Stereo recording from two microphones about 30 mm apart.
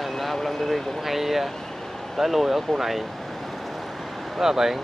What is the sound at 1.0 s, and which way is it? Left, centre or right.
Speech, centre.